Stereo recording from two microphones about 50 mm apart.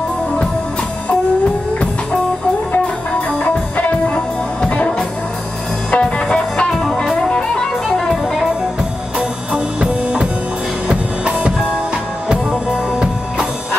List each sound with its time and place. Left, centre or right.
3.1 s music: left; by 8.1 s centre
9.5 s music: centre